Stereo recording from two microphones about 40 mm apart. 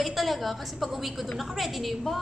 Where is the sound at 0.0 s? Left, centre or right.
Centre.